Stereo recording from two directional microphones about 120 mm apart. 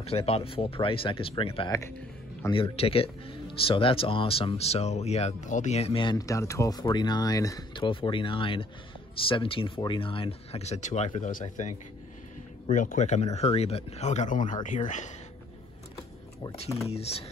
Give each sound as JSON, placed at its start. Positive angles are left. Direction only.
{"t": 0.0, "sound": "speech", "side_deg": 55}
{"t": 6.1, "sound": "speech", "side_deg": 25}
{"t": 7.7, "sound": "speech", "side_deg": 45}
{"t": 11.1, "sound": "speech", "side_deg": 90}
{"t": 12.7, "sound": "speech", "side_deg": 85}
{"t": 16.8, "sound": "speech", "side_deg": 60}